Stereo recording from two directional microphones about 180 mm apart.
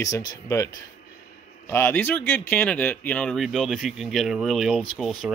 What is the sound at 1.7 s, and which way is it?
Speech, 15° left (ahead or behind).